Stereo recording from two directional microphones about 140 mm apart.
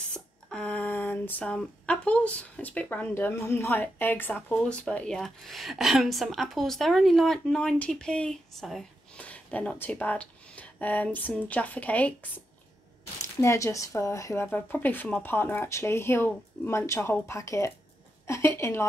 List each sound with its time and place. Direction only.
0.1 s speech: 5° left (ahead or behind)
13.2 s speech: 20° left (ahead or behind)